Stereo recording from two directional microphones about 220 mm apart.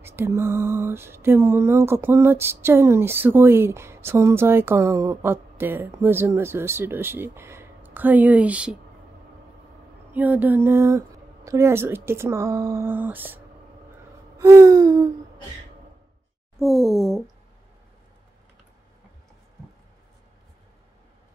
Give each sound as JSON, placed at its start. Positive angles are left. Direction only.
{"t": 0.0, "sound": "speech", "side_deg": -10}
{"t": 10.1, "sound": "speech", "side_deg": -5}
{"t": 14.4, "sound": "speech", "side_deg": -15}
{"t": 16.5, "sound": "speech", "side_deg": 0}